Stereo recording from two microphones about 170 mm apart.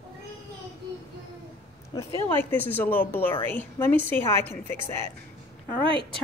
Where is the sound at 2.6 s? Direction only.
10° left (ahead or behind).